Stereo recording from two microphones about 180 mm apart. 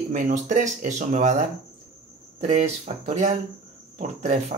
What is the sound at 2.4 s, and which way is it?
Speech, 40° right (ahead or behind).